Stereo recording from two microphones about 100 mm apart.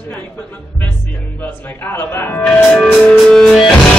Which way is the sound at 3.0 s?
5° left (ahead or behind).